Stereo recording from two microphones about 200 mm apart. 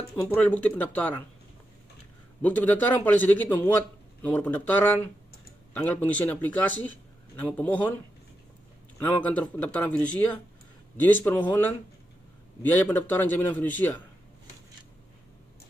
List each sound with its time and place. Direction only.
0.1 s a man's voice: 10° left (ahead or behind)
2.4 s a man's voice: 10° left (ahead or behind)
9.0 s a man's voice: 5° left (ahead or behind)